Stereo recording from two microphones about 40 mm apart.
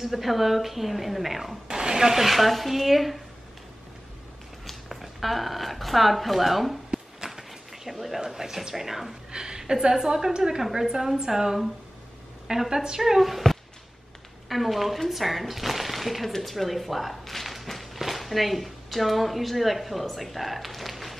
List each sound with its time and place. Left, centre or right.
0.0 s a woman's voice: centre
1.7 s a woman's voice: centre
4.6 s speech: centre
7.2 s a sound: centre
8.2 s a woman's voice: centre
9.3 s a woman's voice: centre